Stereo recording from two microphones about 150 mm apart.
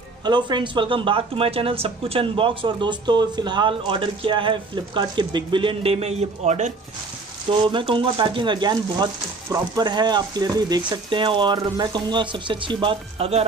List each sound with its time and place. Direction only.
0.2 s speech: 30° right (ahead or behind); by 6.7 s 50° right (ahead or behind)
7.4 s speech: 35° right (ahead or behind)